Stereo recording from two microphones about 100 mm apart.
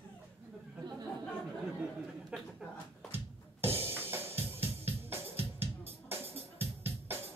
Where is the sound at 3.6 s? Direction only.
25° right (ahead or behind).